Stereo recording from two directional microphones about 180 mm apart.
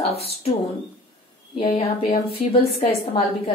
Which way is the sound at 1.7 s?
35° left (ahead or behind).